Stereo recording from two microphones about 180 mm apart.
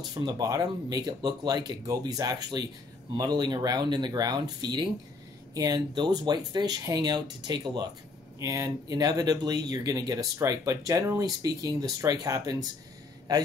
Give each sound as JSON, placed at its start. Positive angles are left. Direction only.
{"t": 0.1, "sound": "speech", "side_deg": -20}